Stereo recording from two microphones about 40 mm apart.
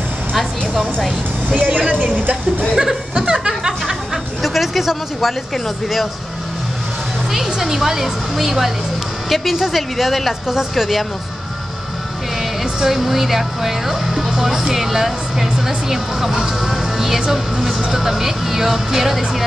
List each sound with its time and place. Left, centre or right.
1.5 s speech: right
2.8 s music: centre
4.4 s a sound: centre
7.3 s a woman's voice: centre
12.8 s speech: centre